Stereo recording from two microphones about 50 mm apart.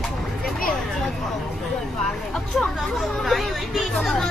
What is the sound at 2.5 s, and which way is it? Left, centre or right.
Speech, centre.